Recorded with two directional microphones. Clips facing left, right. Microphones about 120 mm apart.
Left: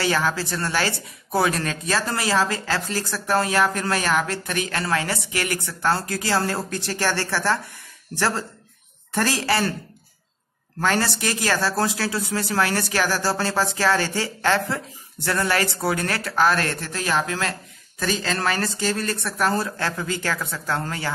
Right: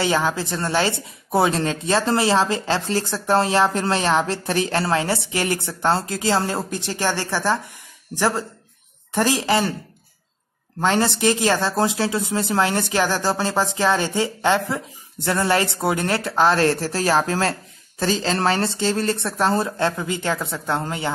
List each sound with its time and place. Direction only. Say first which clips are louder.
0.0 s speech: right 2 dB; 20° right (ahead or behind)
10.8 s speech: right 3 dB; 20° right (ahead or behind)